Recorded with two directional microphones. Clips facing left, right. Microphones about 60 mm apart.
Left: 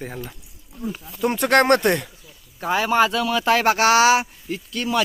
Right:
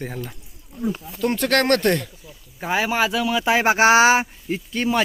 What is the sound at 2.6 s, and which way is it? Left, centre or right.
Speech, centre.